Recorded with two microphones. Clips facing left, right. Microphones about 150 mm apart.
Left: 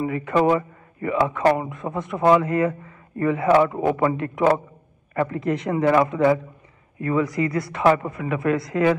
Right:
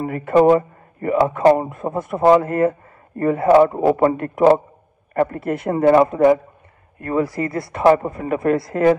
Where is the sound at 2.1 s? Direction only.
35° right (ahead or behind).